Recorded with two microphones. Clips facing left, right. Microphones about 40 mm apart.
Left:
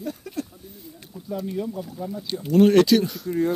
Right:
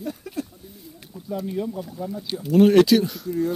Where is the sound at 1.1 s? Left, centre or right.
Centre.